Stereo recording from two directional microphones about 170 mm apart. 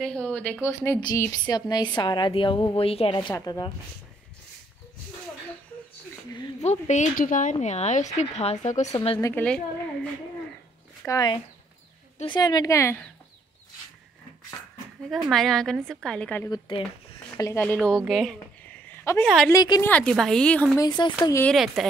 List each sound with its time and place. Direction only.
0.0 s a woman's voice: 5° left (ahead or behind); by 3.7 s 25° left (ahead or behind)
6.6 s speech: 45° left (ahead or behind)
9.2 s a woman's voice: 10° left (ahead or behind)
11.1 s a woman's voice: 20° left (ahead or behind)
15.0 s a woman's voice: centre (ahead or behind)
16.4 s a woman's voice: 25° left (ahead or behind)
17.4 s a woman's voice: 15° left (ahead or behind)
19.5 s a woman's voice: 25° left (ahead or behind)
19.8 s a woman's voice: 5° left (ahead or behind)
20.7 s a woman's voice: 25° left (ahead or behind)
21.8 s a woman's voice: centre (ahead or behind)